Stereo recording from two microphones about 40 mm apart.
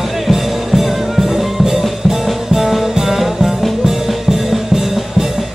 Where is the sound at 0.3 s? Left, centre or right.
Centre.